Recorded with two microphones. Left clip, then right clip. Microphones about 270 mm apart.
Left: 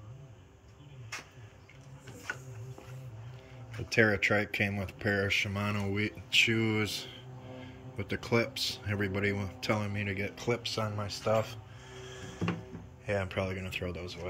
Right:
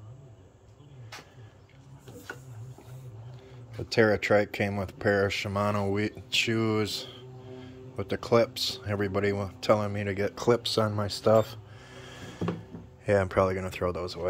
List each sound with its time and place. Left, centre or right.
3.9 s speech: centre